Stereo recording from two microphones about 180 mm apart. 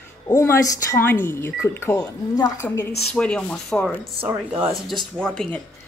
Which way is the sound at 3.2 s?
5° left (ahead or behind).